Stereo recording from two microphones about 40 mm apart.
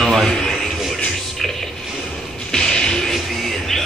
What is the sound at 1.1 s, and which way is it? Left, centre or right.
Music, centre.